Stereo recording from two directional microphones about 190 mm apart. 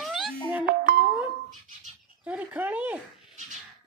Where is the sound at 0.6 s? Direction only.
50° right (ahead or behind).